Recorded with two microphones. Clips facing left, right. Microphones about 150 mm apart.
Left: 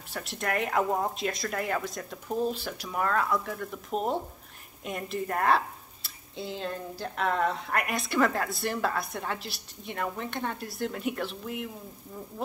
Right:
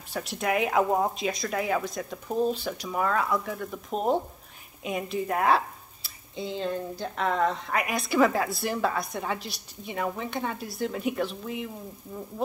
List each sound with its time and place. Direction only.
0.1 s speech: centre (ahead or behind)